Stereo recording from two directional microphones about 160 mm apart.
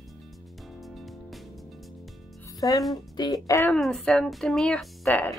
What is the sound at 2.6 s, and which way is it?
Speech, 20° left (ahead or behind).